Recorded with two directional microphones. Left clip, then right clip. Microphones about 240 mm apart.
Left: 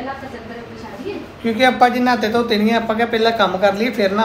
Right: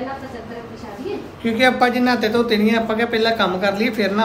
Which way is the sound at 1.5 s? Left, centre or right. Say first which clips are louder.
Left 2 dB; centre.